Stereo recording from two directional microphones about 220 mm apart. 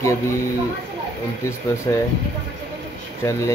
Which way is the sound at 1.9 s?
15° left (ahead or behind).